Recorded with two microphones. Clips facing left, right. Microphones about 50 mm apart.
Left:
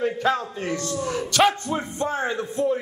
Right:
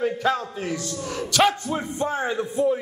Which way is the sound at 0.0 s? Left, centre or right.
Centre.